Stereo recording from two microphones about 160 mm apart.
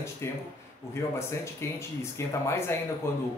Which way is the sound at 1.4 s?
15° left (ahead or behind).